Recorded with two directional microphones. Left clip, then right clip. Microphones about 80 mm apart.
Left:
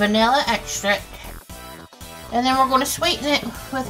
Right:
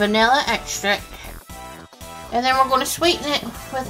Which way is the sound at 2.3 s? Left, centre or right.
Right.